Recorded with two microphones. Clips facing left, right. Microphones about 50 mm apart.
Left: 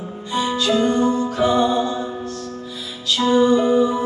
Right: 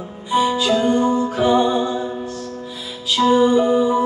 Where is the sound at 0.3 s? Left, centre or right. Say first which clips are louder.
Right 3 dB; centre.